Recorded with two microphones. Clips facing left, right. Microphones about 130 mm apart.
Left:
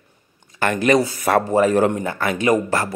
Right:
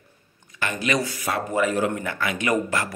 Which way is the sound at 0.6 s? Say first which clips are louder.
Left 8 dB; 45° left (ahead or behind).